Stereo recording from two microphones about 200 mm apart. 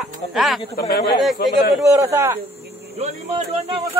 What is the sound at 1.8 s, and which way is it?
Speech, 15° right (ahead or behind).